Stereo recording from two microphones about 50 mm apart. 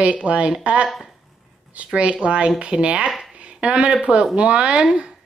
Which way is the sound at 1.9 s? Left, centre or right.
Right.